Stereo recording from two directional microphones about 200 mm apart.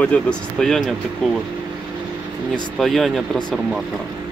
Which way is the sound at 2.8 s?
Centre (ahead or behind).